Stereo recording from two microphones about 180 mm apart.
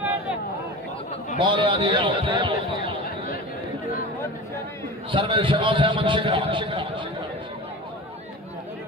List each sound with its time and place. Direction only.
1.4 s a man's voice: 25° right (ahead or behind)
5.1 s a man's voice: 30° right (ahead or behind)